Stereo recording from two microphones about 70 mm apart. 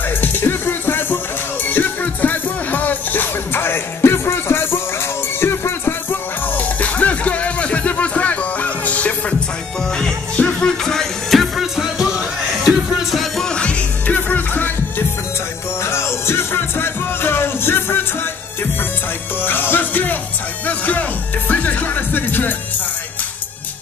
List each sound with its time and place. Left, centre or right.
0.2 s music: left
6.5 s music: left; by 13.5 s centre
13.5 s music: centre
15.8 s music: left
19.4 s music: left